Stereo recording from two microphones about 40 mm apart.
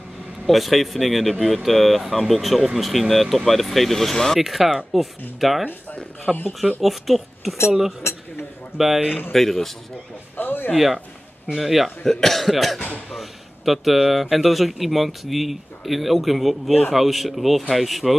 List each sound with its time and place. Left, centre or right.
0.5 s speech: centre
4.4 s speech: centre
8.0 s speech: left
8.7 s speech: centre
9.3 s speech: centre
10.3 s a sound: left
11.5 s speech: centre
12.0 s speech: centre